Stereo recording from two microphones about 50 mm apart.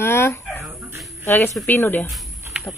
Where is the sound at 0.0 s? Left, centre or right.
Left.